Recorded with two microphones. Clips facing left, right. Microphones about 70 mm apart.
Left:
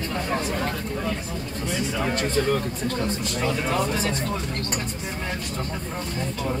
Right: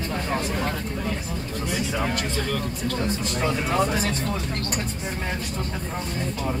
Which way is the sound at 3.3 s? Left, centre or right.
Right.